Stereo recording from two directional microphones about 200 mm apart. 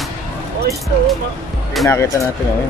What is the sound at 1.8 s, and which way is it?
Speech, 15° left (ahead or behind).